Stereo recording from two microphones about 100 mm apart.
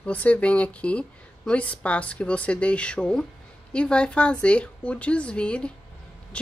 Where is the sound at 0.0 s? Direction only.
15° left (ahead or behind).